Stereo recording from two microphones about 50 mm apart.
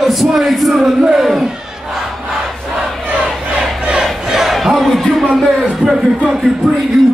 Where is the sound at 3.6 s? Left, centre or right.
Centre.